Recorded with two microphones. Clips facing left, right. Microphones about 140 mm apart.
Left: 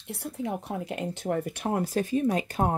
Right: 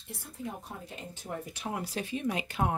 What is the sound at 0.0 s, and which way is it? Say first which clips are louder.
Speech: left 7 dB; 70° left (ahead or behind).